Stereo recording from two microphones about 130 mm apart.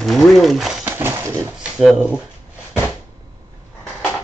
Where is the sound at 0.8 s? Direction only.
15° right (ahead or behind).